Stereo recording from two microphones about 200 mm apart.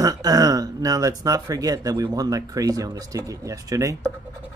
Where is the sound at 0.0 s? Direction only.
20° right (ahead or behind).